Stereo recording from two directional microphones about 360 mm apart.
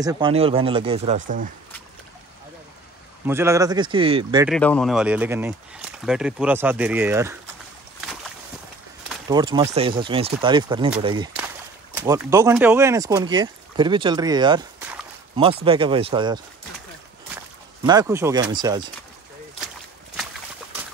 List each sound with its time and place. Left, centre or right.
0.0 s speech: centre
3.3 s speech: centre
4.5 s speech: centre
9.3 s speech: centre
17.8 s speech: centre